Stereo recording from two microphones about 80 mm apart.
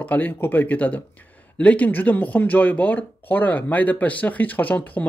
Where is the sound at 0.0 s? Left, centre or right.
Left.